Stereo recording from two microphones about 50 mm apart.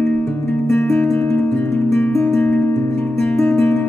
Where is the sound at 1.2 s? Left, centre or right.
Left.